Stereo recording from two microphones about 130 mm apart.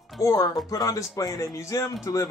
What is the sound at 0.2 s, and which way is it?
Speech, 25° left (ahead or behind).